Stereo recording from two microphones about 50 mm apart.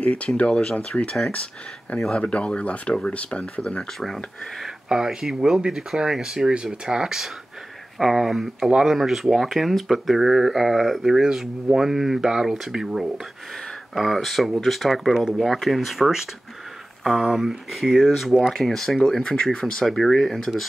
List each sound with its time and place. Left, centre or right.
0.4 s speech: centre
4.8 s speech: centre
13.9 s speech: centre
19.0 s speech: centre